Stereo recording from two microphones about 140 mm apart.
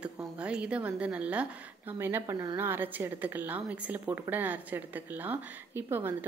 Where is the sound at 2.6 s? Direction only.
15° right (ahead or behind).